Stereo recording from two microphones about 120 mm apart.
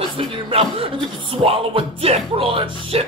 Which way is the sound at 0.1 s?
45° right (ahead or behind).